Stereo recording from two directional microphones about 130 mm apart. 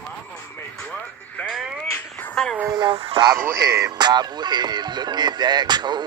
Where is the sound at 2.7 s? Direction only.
40° right (ahead or behind).